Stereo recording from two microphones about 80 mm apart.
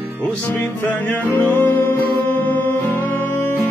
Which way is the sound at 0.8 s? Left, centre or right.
Left.